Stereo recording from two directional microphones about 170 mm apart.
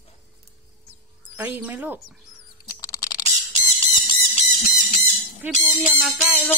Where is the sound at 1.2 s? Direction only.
10° right (ahead or behind).